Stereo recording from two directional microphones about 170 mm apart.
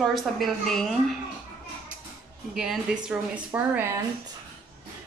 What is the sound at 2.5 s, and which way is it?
Speech, 5° right (ahead or behind).